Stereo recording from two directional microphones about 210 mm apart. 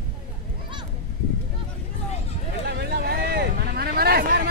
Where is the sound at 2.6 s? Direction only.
50° right (ahead or behind).